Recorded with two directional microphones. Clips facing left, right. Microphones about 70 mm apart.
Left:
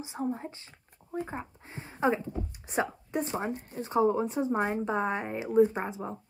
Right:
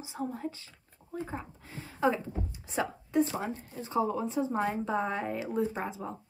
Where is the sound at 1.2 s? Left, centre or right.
Left.